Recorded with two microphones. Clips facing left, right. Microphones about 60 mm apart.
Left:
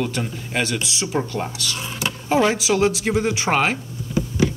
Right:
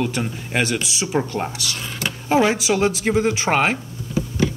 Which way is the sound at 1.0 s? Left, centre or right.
Centre.